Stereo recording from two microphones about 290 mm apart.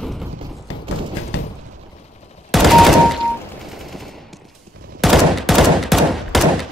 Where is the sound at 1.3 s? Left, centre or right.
Left.